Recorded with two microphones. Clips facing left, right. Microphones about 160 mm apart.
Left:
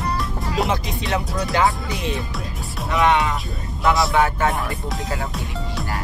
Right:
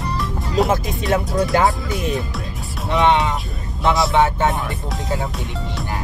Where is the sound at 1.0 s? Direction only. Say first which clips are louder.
Right 5 dB; centre (ahead or behind).